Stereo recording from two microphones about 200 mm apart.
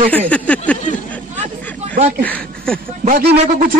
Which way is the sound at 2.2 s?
5° left (ahead or behind).